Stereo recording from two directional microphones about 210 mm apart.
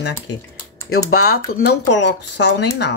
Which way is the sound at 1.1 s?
45° left (ahead or behind).